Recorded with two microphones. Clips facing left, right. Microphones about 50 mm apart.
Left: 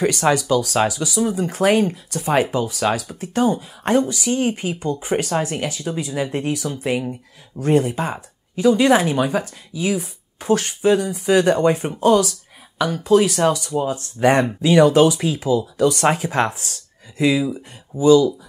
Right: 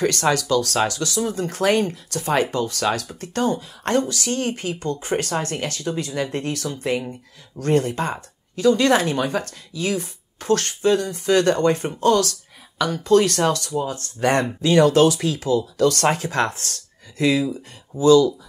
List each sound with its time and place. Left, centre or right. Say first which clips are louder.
0.0 s speech: left 2 dB; centre
13.7 s speech: left 3 dB; left